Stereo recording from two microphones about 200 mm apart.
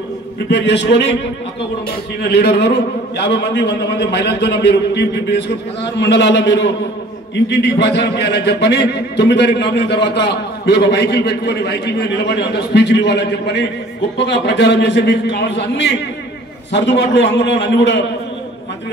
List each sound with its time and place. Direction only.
0.5 s a man's voice: 60° left (ahead or behind)
2.2 s a man's voice: 55° left (ahead or behind)